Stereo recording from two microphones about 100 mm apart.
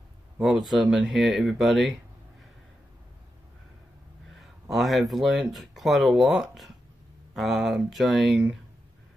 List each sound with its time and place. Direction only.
0.4 s speech: centre (ahead or behind)
4.4 s speech: centre (ahead or behind)